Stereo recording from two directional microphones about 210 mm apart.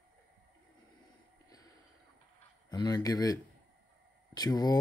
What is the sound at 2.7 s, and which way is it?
Speech, 20° left (ahead or behind).